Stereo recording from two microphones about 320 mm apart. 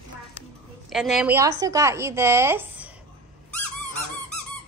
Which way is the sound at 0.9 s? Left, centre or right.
Centre.